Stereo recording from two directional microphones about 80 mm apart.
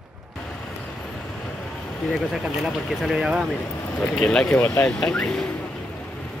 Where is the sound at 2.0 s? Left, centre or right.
Centre.